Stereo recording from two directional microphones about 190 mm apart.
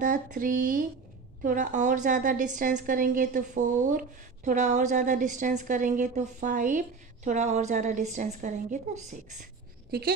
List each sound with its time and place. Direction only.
0.0 s a woman's voice: 40° right (ahead or behind)
9.8 s speech: 55° right (ahead or behind)